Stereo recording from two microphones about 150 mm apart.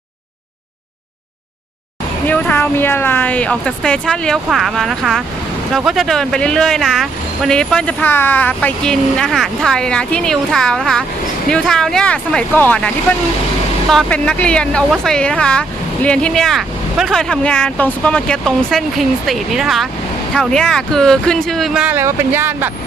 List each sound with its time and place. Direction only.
2.2 s speech: 10° left (ahead or behind)
21.8 s speech: 15° right (ahead or behind)